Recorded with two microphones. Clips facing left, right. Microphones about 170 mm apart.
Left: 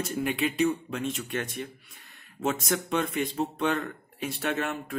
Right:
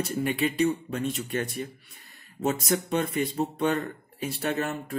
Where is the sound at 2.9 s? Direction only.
Centre (ahead or behind).